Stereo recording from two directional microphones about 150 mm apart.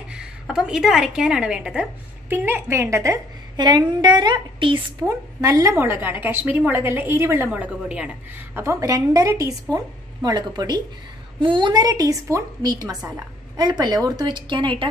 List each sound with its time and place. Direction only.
0.1 s a woman's voice: 5° right (ahead or behind); by 4.7 s 30° right (ahead or behind)
5.0 s a woman's voice: 20° right (ahead or behind)